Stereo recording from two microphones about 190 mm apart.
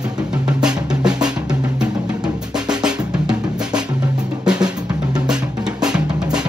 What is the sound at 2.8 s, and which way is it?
Drum, 5° right (ahead or behind).